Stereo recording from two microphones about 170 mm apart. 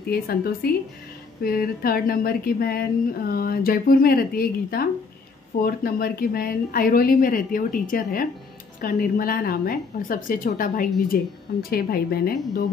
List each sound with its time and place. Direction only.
0.1 s speech: 65° left (ahead or behind)